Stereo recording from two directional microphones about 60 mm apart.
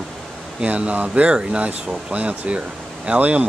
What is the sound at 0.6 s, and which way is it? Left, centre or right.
Speech, centre.